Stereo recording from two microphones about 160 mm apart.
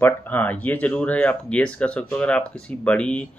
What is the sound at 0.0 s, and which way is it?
Speech, 10° left (ahead or behind).